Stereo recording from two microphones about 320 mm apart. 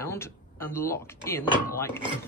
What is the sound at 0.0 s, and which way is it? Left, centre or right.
Speech, centre.